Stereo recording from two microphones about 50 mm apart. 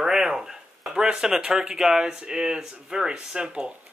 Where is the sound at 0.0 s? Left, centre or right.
Centre.